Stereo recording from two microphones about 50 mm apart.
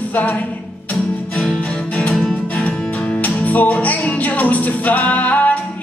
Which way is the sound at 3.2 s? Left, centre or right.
Left.